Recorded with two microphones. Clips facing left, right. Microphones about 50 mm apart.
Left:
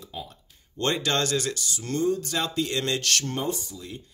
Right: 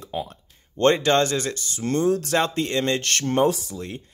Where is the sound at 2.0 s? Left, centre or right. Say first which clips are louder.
Right 3 dB; right.